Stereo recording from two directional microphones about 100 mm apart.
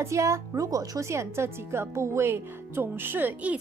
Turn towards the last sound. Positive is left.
turn(degrees=-20)  # may be behind; listen again after turning